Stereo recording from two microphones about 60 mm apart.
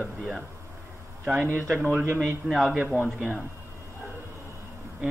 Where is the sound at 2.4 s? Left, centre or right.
Centre.